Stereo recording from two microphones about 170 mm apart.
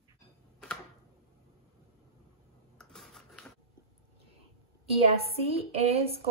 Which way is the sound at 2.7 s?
5° left (ahead or behind).